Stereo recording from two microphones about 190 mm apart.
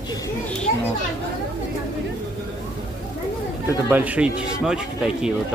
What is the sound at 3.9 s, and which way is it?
Speech, 10° right (ahead or behind).